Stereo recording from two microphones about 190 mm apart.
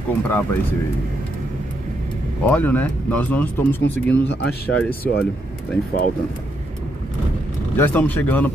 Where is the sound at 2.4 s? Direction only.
10° left (ahead or behind).